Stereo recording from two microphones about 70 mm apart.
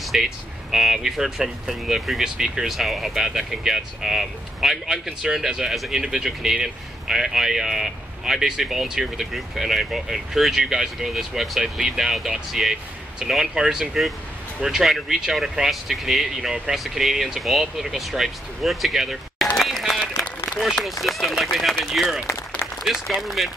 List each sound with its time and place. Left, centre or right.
0.0 s speech: centre
19.5 s run: centre
21.0 s speech: centre